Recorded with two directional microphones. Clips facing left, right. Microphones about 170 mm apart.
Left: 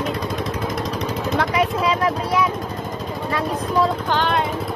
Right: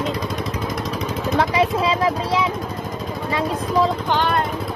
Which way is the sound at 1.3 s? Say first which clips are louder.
Right 2 dB; 30° right (ahead or behind).